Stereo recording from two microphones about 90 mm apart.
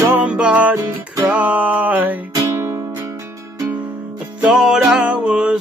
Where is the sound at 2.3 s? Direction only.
30° right (ahead or behind).